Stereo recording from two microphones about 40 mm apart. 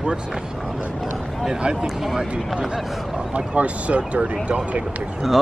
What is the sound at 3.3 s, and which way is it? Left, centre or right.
Speech, right.